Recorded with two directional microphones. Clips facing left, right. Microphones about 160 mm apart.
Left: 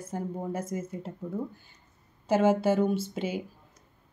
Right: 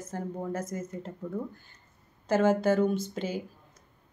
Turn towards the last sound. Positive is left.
turn(degrees=5)  # may be behind; listen again after turning